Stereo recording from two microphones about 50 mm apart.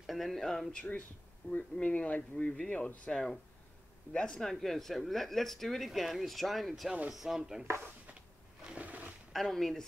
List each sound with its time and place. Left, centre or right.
0.0 s speech: centre
1.5 s speech: left; by 7.6 s centre
8.7 s roaring cats: right
9.3 s speech: centre